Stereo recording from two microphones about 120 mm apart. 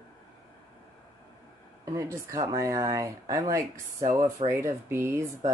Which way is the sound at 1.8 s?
25° right (ahead or behind).